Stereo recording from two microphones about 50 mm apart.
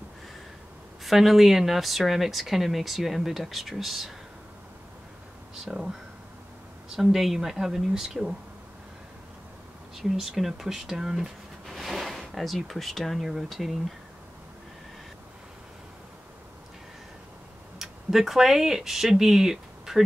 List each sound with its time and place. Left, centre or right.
1.0 s a woman's voice: centre
5.7 s speech: centre
7.0 s speech: centre
9.9 s speech: centre
17.7 s speech: centre